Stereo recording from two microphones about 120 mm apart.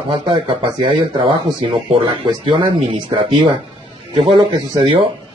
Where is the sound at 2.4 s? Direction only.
40° right (ahead or behind).